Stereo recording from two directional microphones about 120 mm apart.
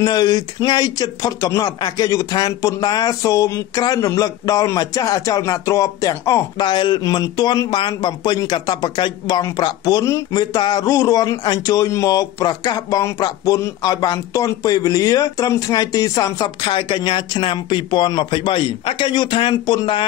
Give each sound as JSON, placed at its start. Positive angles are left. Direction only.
{"t": 0.0, "sound": "a man's voice", "side_deg": 35}